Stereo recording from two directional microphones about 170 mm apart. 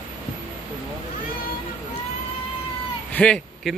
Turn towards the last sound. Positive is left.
turn(degrees=5)  # may be behind; listen again after turning